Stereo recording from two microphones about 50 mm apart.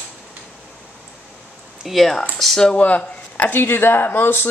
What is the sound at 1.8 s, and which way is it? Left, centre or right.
Speech, centre.